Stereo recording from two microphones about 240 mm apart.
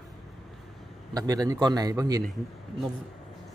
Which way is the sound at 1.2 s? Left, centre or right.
Centre.